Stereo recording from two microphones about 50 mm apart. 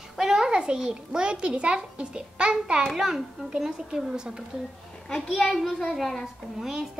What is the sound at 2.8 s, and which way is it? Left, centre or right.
A child's voice, centre.